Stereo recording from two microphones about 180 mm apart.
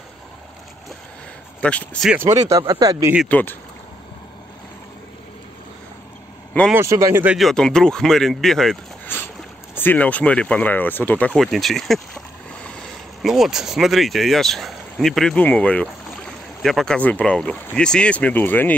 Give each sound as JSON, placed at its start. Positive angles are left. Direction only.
{"t": 1.6, "sound": "speech", "side_deg": 5}
{"t": 2.0, "sound": "speech", "side_deg": -10}
{"t": 3.3, "sound": "speech", "side_deg": 10}
{"t": 6.7, "sound": "speech", "side_deg": -15}
{"t": 7.3, "sound": "speech", "side_deg": 0}
{"t": 13.2, "sound": "speech", "side_deg": 0}